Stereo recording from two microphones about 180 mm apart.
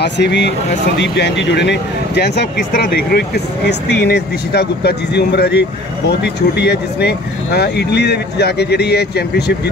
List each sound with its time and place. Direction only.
0.0 s speech: 70° left (ahead or behind)